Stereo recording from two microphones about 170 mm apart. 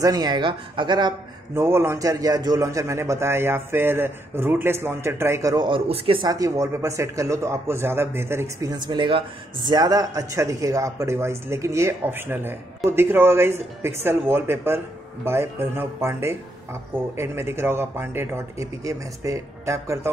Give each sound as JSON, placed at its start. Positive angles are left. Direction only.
{"t": 0.0, "sound": "a man's voice", "side_deg": -25}
{"t": 6.2, "sound": "a man's voice", "side_deg": -20}